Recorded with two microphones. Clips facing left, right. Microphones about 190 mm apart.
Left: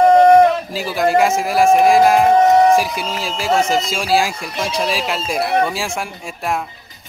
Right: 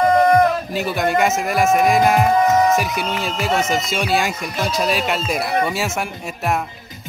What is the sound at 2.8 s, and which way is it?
Speech, centre (ahead or behind).